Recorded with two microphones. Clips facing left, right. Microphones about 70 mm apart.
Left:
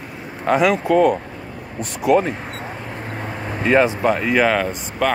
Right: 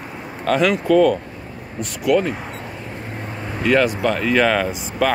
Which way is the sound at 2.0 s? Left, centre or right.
Left.